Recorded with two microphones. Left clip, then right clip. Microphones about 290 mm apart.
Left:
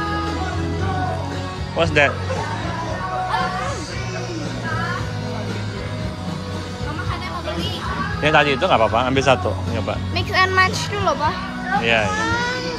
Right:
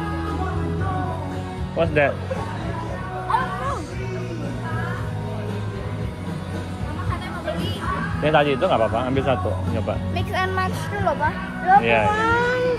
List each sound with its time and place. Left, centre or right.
1.8 s speech: centre
8.2 s speech: centre
10.1 s music: left
11.8 s speech: centre
12.2 s baby cry: right